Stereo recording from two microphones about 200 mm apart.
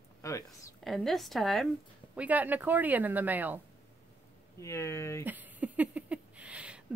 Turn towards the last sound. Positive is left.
turn(degrees=-5)  # may be behind; listen again after turning